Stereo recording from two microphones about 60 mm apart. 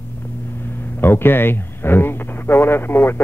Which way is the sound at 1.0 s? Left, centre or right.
Left.